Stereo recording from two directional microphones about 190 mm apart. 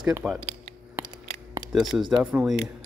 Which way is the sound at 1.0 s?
10° right (ahead or behind).